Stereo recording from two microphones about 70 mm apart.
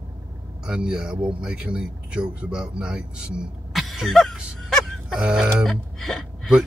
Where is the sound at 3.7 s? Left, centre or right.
Centre.